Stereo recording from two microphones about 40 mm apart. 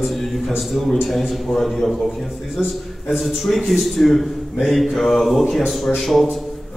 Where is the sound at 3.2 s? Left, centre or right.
Centre.